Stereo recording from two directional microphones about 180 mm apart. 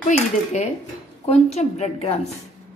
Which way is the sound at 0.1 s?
40° left (ahead or behind).